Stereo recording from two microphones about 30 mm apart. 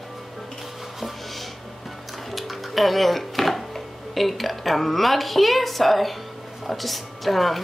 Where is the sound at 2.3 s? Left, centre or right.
Centre.